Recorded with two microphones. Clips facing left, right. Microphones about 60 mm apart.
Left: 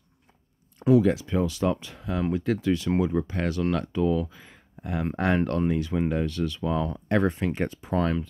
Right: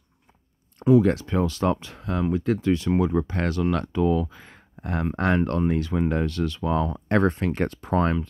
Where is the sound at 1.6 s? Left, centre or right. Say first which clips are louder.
Right 2 dB; right.